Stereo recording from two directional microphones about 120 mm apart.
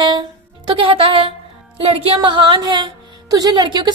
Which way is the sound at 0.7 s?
45° right (ahead or behind).